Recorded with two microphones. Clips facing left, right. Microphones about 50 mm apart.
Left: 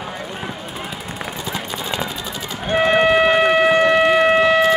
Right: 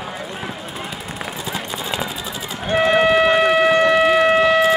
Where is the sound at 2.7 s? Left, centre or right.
Centre.